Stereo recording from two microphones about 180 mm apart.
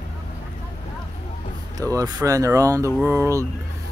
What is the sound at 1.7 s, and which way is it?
Speech, 20° right (ahead or behind).